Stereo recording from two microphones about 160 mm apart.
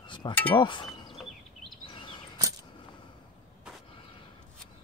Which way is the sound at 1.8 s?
30° left (ahead or behind).